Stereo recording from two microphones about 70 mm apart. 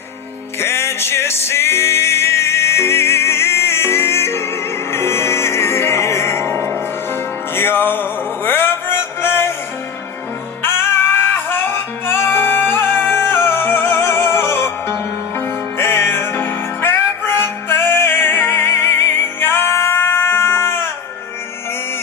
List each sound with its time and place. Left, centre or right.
0.6 s music: left
10.6 s music: left